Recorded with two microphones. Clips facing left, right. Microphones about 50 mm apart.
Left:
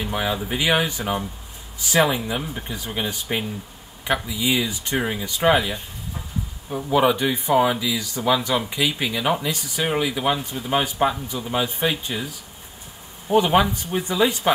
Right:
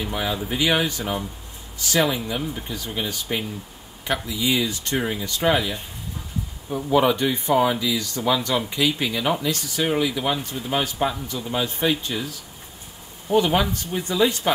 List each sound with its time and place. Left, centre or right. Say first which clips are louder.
0.0 s speech: left 1 dB; centre